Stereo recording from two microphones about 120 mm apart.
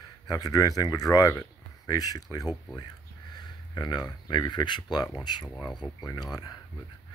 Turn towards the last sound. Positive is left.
turn(degrees=35)  # may be behind; listen again after turning